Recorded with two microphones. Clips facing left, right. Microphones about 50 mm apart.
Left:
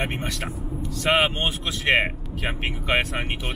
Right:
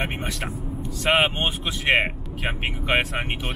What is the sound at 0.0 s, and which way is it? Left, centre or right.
Speech, centre.